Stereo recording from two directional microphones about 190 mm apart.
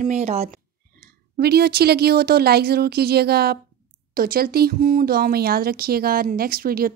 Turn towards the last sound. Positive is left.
turn(degrees=-50)  # may be behind; listen again after turning